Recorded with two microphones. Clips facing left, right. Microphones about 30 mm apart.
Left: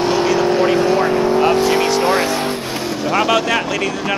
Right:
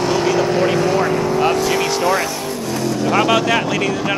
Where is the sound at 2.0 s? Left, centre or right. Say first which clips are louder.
Left 2 dB; left.